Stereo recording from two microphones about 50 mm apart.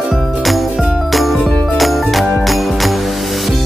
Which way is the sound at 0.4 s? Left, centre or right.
Centre.